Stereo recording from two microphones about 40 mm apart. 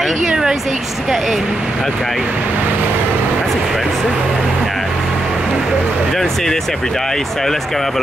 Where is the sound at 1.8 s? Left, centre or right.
Centre.